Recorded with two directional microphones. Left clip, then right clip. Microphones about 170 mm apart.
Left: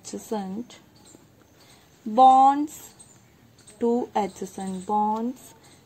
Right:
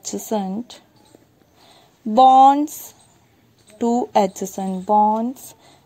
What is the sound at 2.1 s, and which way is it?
Speech, 55° right (ahead or behind).